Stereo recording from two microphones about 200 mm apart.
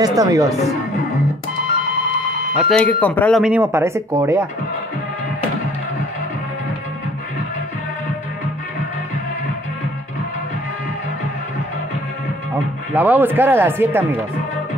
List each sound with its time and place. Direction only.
0.0 s speech: 15° right (ahead or behind)
2.7 s speech: 5° left (ahead or behind); by 4.5 s 15° right (ahead or behind)
12.9 s speech: 10° right (ahead or behind)